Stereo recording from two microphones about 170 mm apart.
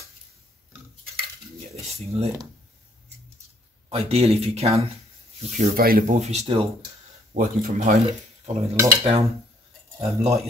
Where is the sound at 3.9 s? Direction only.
35° right (ahead or behind); by 6.0 s 60° right (ahead or behind).